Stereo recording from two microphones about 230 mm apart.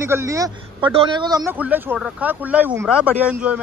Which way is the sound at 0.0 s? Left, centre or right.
Centre.